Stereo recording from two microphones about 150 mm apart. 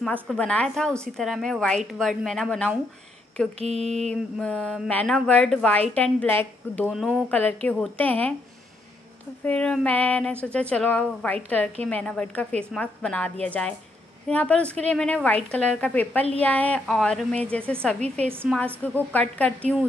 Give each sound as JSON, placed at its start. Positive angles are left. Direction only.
{"t": 0.0, "sound": "a woman's voice", "side_deg": 5}
{"t": 3.5, "sound": "mantra", "side_deg": -45}
{"t": 4.1, "sound": "a woman's voice", "side_deg": 5}
{"t": 6.9, "sound": "a woman's voice", "side_deg": 0}
{"t": 9.4, "sound": "a woman's voice", "side_deg": 5}
{"t": 18.5, "sound": "a woman's voice", "side_deg": -5}
{"t": 18.9, "sound": "a woman's voice", "side_deg": 10}